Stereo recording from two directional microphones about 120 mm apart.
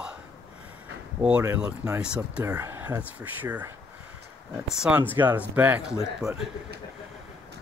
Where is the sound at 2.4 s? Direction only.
20° right (ahead or behind).